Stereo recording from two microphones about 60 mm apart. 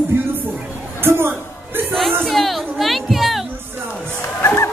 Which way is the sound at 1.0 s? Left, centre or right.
Right.